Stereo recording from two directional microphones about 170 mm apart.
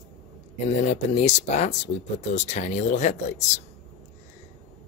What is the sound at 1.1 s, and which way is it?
Speech, 40° left (ahead or behind).